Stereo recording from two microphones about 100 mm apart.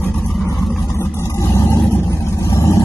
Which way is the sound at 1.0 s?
25° left (ahead or behind).